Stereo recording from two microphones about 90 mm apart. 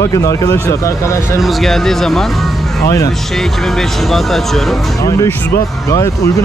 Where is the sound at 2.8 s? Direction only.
35° left (ahead or behind).